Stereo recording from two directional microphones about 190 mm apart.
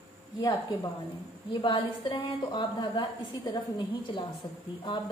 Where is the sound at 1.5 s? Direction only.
25° left (ahead or behind).